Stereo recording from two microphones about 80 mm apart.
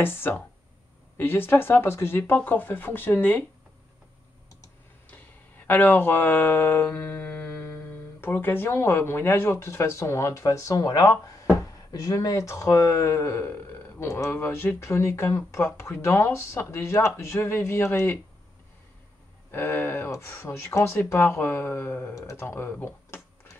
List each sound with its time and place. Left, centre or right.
0.0 s speech: left
5.1 s speech: left
19.5 s speech: left
22.1 s speech: left
22.5 s computer keyboard: left